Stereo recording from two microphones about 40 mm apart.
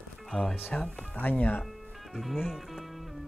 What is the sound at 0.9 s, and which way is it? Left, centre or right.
Speech, left.